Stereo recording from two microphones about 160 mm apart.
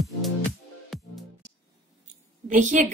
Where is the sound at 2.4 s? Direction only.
50° right (ahead or behind).